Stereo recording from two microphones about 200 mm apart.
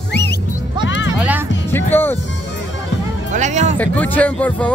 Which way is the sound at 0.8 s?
65° left (ahead or behind).